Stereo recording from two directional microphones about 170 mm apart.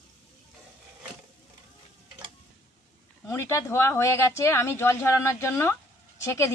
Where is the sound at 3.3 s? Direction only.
15° left (ahead or behind).